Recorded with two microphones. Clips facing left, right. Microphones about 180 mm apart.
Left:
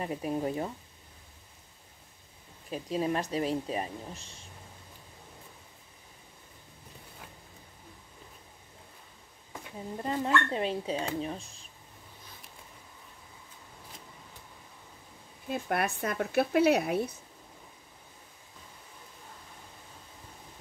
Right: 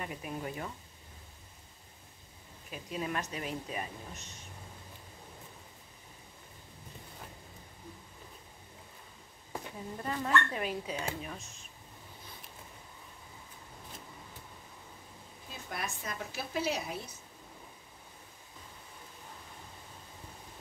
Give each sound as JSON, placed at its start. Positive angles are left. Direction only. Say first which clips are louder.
{"t": 0.0, "sound": "speech", "louder": "left 8 dB", "side_deg": 30}
{"t": 2.7, "sound": "speech", "louder": "left 6 dB", "side_deg": 35}
{"t": 10.0, "sound": "speech", "louder": "left 3 dB", "side_deg": 25}
{"t": 15.5, "sound": "speech", "louder": "left 10 dB", "side_deg": 60}